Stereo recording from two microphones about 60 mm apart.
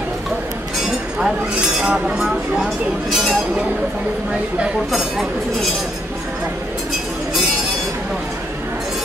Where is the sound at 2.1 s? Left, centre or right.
Centre.